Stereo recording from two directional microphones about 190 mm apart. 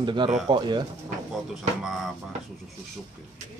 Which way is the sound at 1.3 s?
Centre (ahead or behind).